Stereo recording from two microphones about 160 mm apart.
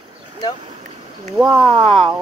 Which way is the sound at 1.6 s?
35° right (ahead or behind).